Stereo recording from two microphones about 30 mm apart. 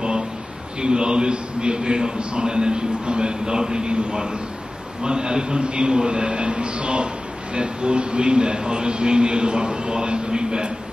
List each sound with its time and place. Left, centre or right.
0.7 s a man's voice: right